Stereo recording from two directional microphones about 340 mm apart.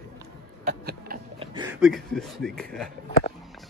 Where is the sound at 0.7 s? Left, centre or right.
Right; by 2.6 s centre.